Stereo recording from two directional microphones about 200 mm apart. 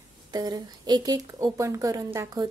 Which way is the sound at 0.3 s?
20° right (ahead or behind).